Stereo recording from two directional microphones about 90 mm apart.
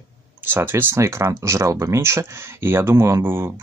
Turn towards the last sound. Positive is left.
turn(degrees=-25)  # may be behind; listen again after turning